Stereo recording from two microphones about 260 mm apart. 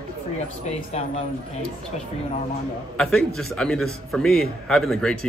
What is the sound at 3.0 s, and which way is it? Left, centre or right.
A man's voice, centre.